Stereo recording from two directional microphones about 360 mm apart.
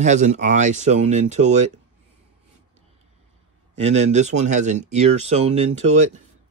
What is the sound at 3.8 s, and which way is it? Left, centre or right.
Speech, centre.